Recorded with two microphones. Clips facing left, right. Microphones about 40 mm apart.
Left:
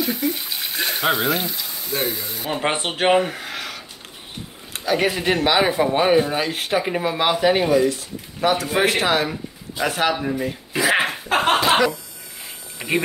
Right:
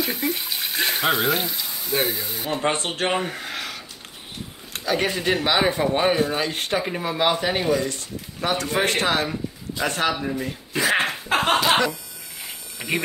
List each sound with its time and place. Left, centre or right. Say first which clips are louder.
0.2 s water: left 1 dB; centre
2.8 s speech: left 6 dB; centre
3.2 s a sound: left 5 dB; centre
4.7 s speech: left 3 dB; centre
10.2 s a sound: left 3 dB; centre
12.7 s speech: left 3 dB; centre